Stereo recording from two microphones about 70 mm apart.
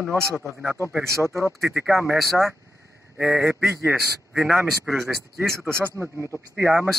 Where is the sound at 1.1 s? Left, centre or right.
Right.